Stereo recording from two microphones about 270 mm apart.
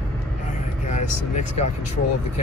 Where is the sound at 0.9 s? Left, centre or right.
Left.